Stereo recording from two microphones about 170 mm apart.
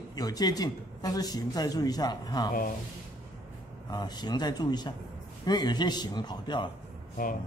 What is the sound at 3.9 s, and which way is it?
Speech, 25° left (ahead or behind).